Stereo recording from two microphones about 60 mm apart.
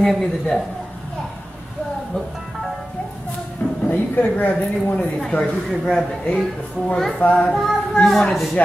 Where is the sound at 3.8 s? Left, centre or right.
Left.